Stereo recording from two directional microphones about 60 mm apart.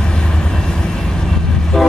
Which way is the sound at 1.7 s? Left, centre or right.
Centre.